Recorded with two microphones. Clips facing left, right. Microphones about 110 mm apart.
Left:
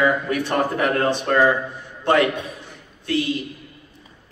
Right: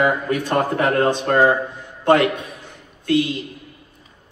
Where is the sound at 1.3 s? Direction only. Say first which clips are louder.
Even; 35° right (ahead or behind).